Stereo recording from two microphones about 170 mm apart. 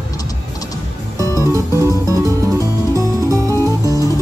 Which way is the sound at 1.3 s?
20° right (ahead or behind).